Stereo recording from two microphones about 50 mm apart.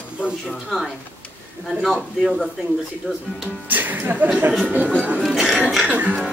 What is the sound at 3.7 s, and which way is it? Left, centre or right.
Speech, right.